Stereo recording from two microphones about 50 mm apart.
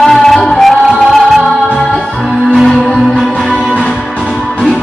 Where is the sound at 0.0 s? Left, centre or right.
Centre.